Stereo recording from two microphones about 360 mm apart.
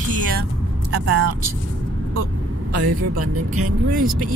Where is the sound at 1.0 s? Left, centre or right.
Right.